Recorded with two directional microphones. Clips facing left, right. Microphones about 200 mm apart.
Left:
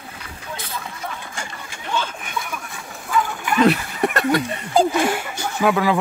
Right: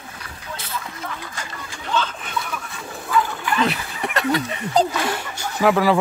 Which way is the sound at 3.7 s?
45° left (ahead or behind).